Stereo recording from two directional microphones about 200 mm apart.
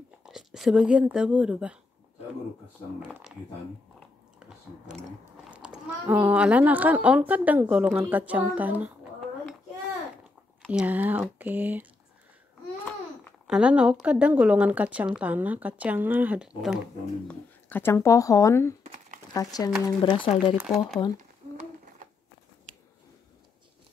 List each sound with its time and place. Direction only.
0.2 s speech: centre (ahead or behind)
3.1 s speech: 5° right (ahead or behind)
5.5 s speech: 5° right (ahead or behind)
10.7 s speech: 5° right (ahead or behind)
13.5 s speech: 5° right (ahead or behind)
17.6 s speech: 10° left (ahead or behind)
20.5 s speech: centre (ahead or behind)